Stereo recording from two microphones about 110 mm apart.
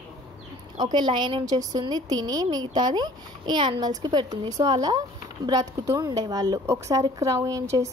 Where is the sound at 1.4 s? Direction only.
35° right (ahead or behind).